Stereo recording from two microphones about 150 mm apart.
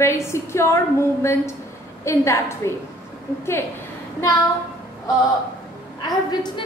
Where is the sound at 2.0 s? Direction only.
20° left (ahead or behind).